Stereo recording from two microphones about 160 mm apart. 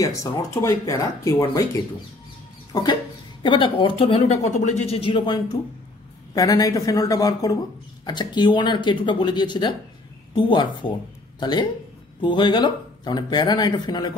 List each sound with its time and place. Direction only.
0.0 s speech: 20° left (ahead or behind)
2.7 s a man's voice: 25° left (ahead or behind)